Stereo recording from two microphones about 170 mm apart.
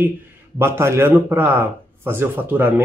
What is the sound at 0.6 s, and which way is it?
A man's voice, 15° right (ahead or behind).